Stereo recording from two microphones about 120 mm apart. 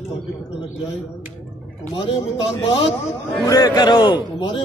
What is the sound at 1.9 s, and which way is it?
A man's voice, 45° left (ahead or behind).